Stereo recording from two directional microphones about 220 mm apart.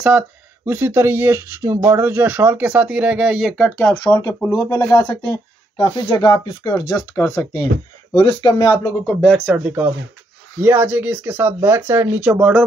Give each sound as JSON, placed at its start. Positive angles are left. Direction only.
{"t": 0.7, "sound": "speech", "side_deg": -10}
{"t": 8.2, "sound": "speech", "side_deg": 25}
{"t": 9.2, "sound": "speech", "side_deg": 0}